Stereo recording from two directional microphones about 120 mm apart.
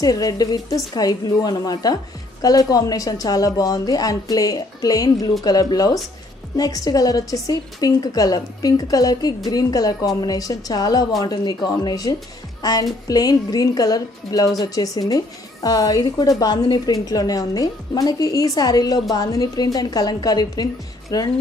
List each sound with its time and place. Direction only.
0.0 s speech: 30° left (ahead or behind)